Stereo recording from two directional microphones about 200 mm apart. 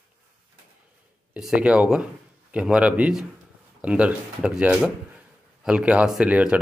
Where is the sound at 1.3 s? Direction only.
5° right (ahead or behind).